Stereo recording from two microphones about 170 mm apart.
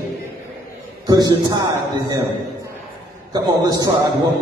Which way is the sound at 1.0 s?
25° right (ahead or behind).